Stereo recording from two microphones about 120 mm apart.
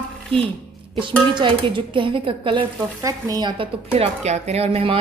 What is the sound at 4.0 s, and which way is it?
Speech, 65° right (ahead or behind).